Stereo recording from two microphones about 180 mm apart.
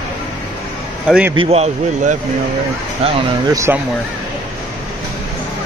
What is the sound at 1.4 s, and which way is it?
Speech, 35° right (ahead or behind).